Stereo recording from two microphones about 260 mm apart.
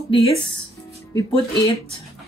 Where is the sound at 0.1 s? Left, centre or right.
Centre.